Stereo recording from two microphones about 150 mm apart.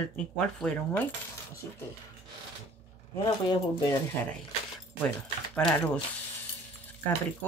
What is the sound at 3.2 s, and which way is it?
Speech, 25° left (ahead or behind).